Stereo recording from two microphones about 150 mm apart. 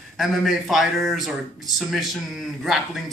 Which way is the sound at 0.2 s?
Centre (ahead or behind).